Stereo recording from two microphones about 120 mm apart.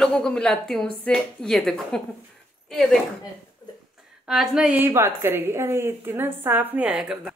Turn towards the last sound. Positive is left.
turn(degrees=-5)  # may be behind; listen again after turning